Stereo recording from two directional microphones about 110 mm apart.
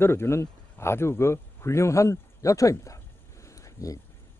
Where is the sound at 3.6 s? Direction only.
30° left (ahead or behind).